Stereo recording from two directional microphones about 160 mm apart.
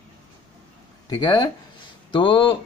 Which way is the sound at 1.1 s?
25° left (ahead or behind).